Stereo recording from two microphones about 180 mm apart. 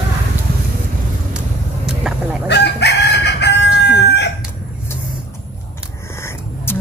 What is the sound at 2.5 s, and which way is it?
Chicken, 70° left (ahead or behind).